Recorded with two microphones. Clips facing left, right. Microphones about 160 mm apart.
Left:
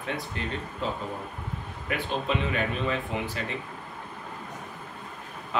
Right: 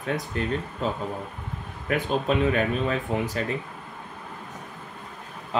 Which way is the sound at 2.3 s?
45° right (ahead or behind).